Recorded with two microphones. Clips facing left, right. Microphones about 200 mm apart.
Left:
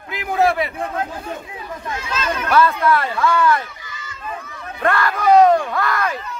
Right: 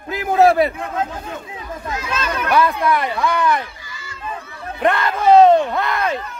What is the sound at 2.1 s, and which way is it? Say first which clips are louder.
Speech: even; 60° right (ahead or behind).